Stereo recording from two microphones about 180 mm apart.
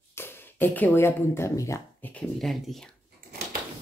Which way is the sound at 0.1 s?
10° left (ahead or behind).